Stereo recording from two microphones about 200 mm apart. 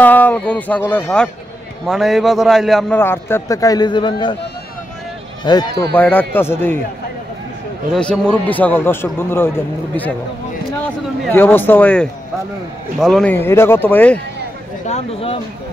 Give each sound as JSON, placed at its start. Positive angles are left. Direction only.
{"t": 0.0, "sound": "a man's voice", "side_deg": 10}
{"t": 3.0, "sound": "a man's voice", "side_deg": 10}
{"t": 5.4, "sound": "speech", "side_deg": 20}
{"t": 5.9, "sound": "a man's voice", "side_deg": 10}
{"t": 7.9, "sound": "a man's voice", "side_deg": 5}
{"t": 11.2, "sound": "a man's voice", "side_deg": 10}
{"t": 14.9, "sound": "speech", "side_deg": 30}